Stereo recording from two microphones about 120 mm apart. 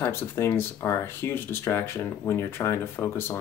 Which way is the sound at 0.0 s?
20° left (ahead or behind).